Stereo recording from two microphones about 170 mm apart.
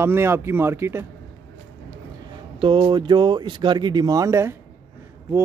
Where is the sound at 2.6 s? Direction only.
30° right (ahead or behind).